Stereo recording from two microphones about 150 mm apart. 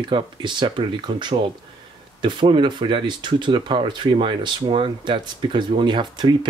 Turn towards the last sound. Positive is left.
turn(degrees=-30)  # may be behind; listen again after turning